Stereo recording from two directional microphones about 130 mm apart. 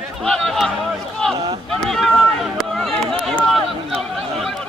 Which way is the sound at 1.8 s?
Centre (ahead or behind).